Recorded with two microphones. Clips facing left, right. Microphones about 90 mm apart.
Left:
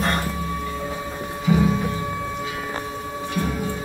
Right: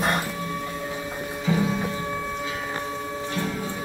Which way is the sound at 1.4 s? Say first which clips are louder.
Left 4 dB; 15° left (ahead or behind).